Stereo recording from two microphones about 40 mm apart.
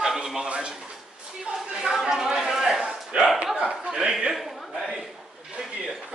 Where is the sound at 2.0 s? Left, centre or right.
Centre.